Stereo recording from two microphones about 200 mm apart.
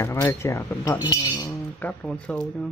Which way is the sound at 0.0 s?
15° left (ahead or behind).